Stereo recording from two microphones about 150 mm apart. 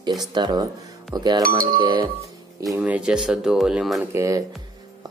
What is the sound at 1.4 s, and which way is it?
Speech, 75° right (ahead or behind).